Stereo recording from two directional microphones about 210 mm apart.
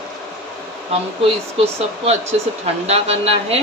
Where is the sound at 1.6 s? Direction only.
30° right (ahead or behind).